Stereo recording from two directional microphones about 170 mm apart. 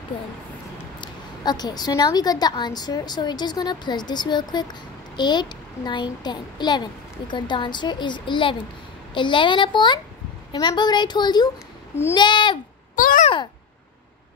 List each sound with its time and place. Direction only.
1.0 s a woman's voice: 25° left (ahead or behind)
12.9 s babbling: 50° left (ahead or behind)